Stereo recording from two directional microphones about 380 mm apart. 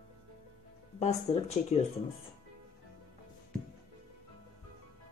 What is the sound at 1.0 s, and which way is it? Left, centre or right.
Speech, centre.